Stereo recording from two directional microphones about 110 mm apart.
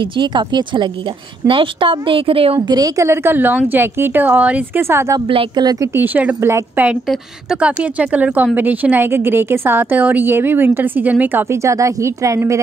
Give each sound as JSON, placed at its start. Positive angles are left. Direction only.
{"t": 0.0, "sound": "speech", "side_deg": -45}
{"t": 2.7, "sound": "a woman's voice", "side_deg": -35}
{"t": 3.1, "sound": "a woman's voice", "side_deg": -20}
{"t": 5.6, "sound": "a woman's voice", "side_deg": -35}
{"t": 5.9, "sound": "a woman's voice", "side_deg": -15}
{"t": 6.9, "sound": "a woman's voice", "side_deg": -10}
{"t": 11.5, "sound": "speech", "side_deg": -30}